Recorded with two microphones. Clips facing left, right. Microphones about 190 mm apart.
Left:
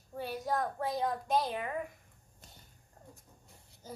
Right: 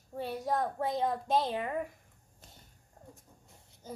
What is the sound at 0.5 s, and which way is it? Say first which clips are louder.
A woman's voice: right 2 dB; 25° right (ahead or behind).